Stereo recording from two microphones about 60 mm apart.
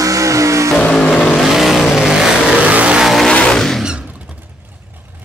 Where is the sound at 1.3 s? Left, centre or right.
Centre.